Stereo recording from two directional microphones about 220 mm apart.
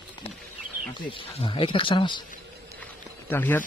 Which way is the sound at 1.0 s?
25° left (ahead or behind).